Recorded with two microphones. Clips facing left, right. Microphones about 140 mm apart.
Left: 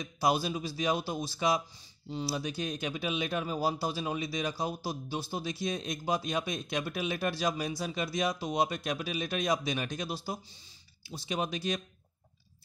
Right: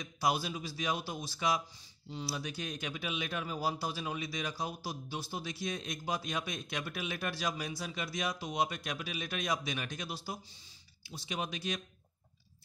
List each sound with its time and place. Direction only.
0.0 s a man's voice: 25° left (ahead or behind)